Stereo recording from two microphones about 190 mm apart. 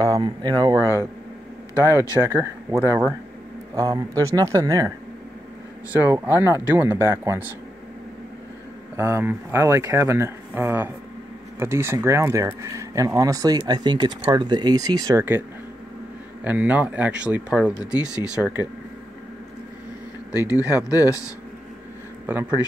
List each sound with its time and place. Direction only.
0.0 s speech: 20° right (ahead or behind)
2.0 s speech: 15° right (ahead or behind)
3.7 s speech: 15° right (ahead or behind)
5.9 s speech: 10° right (ahead or behind)
8.9 s speech: 15° right (ahead or behind)
16.4 s speech: 10° right (ahead or behind)
20.2 s speech: 20° left (ahead or behind)
20.5 s speech: 10° right (ahead or behind)
22.2 s speech: 10° right (ahead or behind)